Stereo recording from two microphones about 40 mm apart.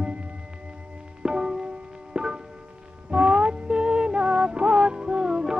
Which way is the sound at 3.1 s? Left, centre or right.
Right.